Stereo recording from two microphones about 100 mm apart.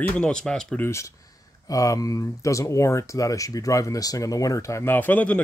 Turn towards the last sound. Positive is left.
turn(degrees=15)  # may be behind; listen again after turning